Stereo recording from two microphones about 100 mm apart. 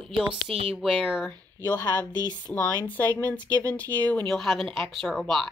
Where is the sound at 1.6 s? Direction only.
20° left (ahead or behind).